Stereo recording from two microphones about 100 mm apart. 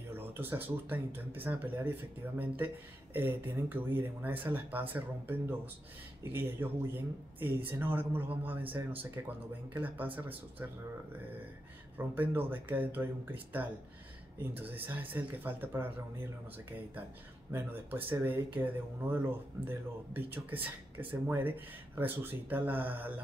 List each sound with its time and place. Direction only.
0.1 s speech: 20° right (ahead or behind)
12.2 s speech: 20° right (ahead or behind)
17.5 s speech: 20° right (ahead or behind)